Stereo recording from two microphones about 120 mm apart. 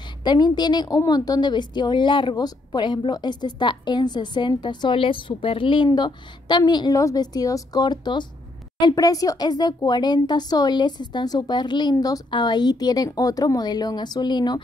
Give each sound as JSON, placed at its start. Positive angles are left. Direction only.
{"t": 0.2, "sound": "a woman's voice", "side_deg": 35}